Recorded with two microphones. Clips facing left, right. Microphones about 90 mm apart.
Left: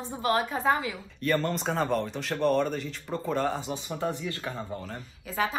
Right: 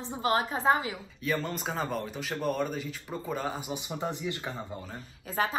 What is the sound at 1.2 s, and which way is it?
Speech, 5° right (ahead or behind).